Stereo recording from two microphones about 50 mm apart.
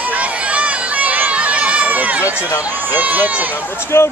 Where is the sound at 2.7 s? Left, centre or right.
Right.